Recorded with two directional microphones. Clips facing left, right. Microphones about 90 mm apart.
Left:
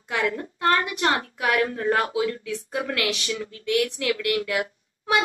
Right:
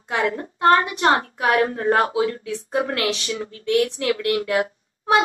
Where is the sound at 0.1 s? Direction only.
35° right (ahead or behind).